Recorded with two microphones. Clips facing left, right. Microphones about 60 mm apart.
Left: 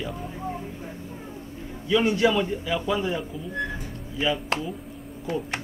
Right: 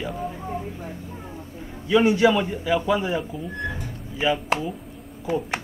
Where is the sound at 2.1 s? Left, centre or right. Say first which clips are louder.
Right 3 dB; centre.